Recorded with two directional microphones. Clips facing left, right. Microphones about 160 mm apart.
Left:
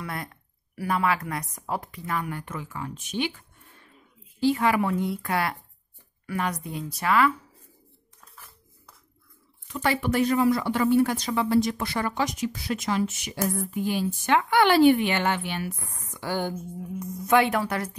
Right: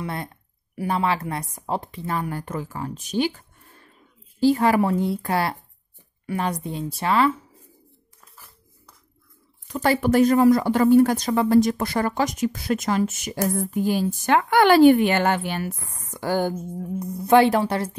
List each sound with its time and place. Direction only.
0.0 s a woman's voice: 25° right (ahead or behind)
8.4 s music: centre (ahead or behind)
9.7 s speech: 40° right (ahead or behind)
17.0 s speech: 30° right (ahead or behind)